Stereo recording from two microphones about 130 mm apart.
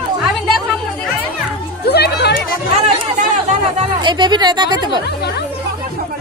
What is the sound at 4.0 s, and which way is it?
Speech, 35° right (ahead or behind).